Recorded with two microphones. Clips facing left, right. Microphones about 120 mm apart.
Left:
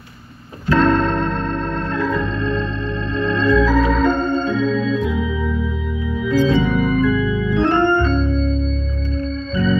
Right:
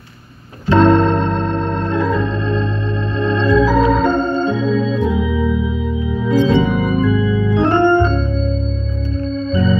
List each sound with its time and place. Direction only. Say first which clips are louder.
0.7 s keyboard: right 4 dB; 25° right (ahead or behind)
2.0 s organ: right 2 dB; 20° right (ahead or behind)
6.2 s music: right 2 dB; 25° right (ahead or behind)
6.6 s organ: right 1 dB; 20° right (ahead or behind)